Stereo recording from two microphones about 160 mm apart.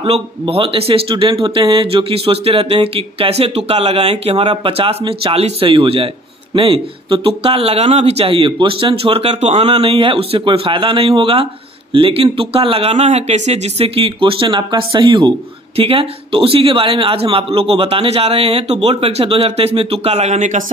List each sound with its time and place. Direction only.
0.0 s speech: 35° right (ahead or behind)